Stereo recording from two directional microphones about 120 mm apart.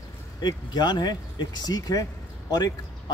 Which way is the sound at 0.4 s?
35° left (ahead or behind).